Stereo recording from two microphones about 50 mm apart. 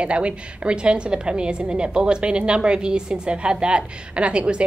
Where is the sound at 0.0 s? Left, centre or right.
Right.